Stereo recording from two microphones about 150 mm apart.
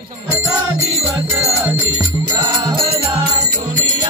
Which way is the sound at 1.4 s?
20° right (ahead or behind).